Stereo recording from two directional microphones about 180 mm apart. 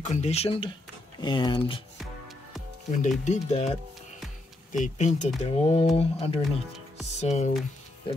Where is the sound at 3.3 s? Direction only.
40° left (ahead or behind).